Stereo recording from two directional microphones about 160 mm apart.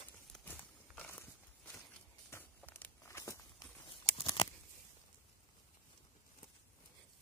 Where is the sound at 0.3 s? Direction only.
10° left (ahead or behind).